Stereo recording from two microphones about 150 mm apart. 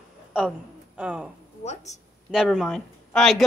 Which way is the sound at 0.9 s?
5° right (ahead or behind).